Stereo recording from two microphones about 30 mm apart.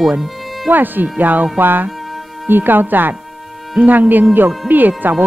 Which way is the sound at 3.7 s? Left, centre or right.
Right.